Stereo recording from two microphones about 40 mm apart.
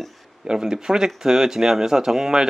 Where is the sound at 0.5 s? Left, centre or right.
Centre.